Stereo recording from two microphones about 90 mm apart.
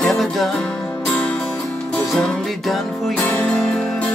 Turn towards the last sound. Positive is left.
turn(degrees=10)  # may be behind; listen again after turning